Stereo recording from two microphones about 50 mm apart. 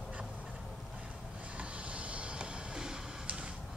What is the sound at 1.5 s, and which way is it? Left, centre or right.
Vehicle, right.